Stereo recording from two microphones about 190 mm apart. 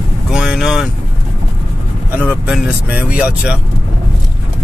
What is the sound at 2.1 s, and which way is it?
Speech, 5° right (ahead or behind).